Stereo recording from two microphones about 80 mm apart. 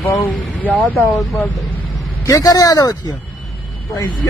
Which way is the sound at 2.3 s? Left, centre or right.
Left.